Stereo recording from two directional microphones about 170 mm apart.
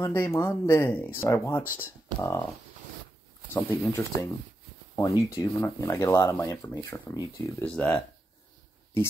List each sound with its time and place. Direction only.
0.0 s speech: 15° left (ahead or behind)
3.5 s speech: 15° left (ahead or behind)